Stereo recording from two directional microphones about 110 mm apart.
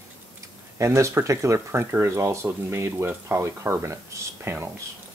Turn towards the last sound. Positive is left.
turn(degrees=-25)  # may be behind; listen again after turning